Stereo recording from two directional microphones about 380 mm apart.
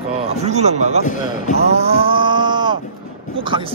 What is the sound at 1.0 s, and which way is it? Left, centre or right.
Speech, centre.